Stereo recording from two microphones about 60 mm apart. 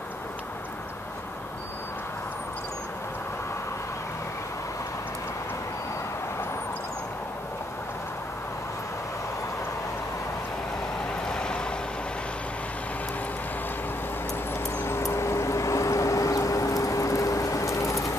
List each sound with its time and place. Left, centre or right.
11.2 s vehicle: centre
14.8 s vehicle: left